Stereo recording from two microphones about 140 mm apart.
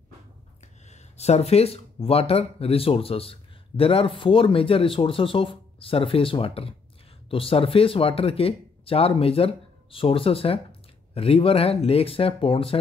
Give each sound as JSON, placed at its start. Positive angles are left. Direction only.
{"t": 1.1, "sound": "speech", "side_deg": 50}